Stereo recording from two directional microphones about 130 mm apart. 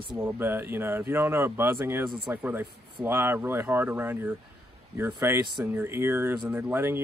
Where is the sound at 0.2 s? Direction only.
15° right (ahead or behind).